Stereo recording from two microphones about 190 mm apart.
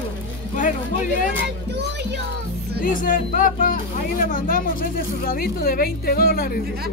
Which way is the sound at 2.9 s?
45° left (ahead or behind).